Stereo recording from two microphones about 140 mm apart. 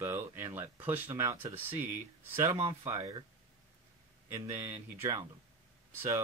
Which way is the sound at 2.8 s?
30° right (ahead or behind).